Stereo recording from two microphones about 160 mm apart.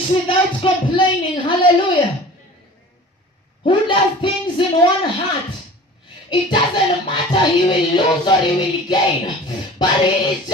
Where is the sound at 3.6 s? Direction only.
30° left (ahead or behind).